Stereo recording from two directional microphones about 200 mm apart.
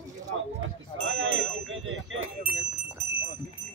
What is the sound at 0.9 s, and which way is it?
Speech, 90° right.